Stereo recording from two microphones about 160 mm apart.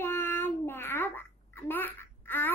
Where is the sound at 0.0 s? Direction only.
15° left (ahead or behind).